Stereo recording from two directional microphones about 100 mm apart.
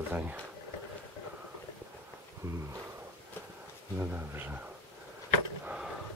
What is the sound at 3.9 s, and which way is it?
Speech, 20° right (ahead or behind).